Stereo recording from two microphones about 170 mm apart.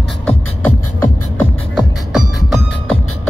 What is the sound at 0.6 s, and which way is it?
Beatboxing, 15° left (ahead or behind).